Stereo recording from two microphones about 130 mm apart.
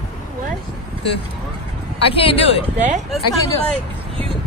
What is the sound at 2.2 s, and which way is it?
Speech, 45° left (ahead or behind).